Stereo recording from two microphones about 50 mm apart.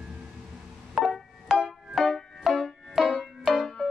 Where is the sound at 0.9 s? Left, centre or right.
Centre.